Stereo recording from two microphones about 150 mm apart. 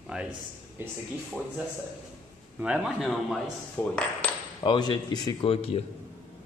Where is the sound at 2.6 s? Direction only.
5° right (ahead or behind).